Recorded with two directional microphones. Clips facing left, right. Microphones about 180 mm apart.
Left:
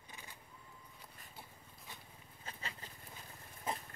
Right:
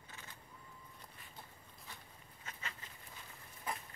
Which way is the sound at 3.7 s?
20° left (ahead or behind).